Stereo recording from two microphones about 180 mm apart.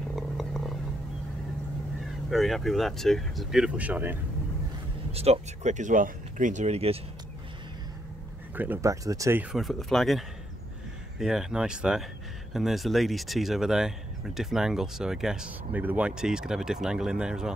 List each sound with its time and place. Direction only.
0.1 s vehicle: centre (ahead or behind)
2.2 s speech: centre (ahead or behind)
5.1 s speech: 35° right (ahead or behind)
8.5 s speech: 10° right (ahead or behind)